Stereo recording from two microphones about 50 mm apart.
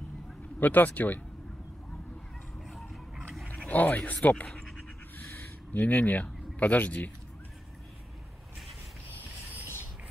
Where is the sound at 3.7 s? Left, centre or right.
Left.